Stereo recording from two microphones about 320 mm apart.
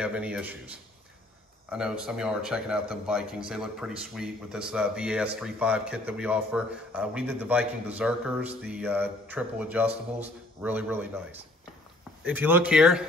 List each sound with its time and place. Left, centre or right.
0.0 s a man's voice: centre
1.7 s a man's voice: centre